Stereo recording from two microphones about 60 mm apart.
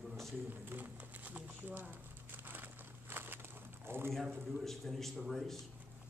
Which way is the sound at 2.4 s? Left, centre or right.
Right.